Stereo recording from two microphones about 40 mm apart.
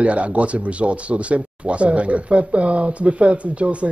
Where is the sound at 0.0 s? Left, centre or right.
Right.